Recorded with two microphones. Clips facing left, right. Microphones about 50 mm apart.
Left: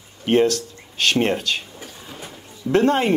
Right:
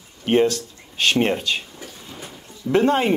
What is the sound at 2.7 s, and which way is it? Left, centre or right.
Speech, centre.